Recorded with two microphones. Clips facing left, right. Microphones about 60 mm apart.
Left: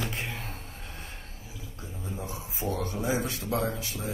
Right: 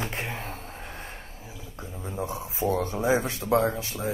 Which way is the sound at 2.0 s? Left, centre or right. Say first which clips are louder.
Right 6 dB; right.